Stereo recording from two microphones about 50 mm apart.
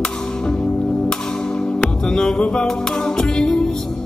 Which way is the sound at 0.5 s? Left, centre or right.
Centre.